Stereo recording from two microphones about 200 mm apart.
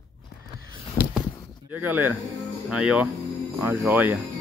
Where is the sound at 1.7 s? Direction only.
10° right (ahead or behind).